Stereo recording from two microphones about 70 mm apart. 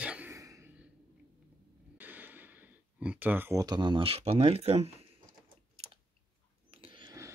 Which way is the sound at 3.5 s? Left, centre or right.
Right.